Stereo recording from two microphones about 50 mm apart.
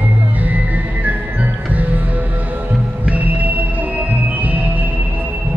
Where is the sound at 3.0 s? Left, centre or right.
Right.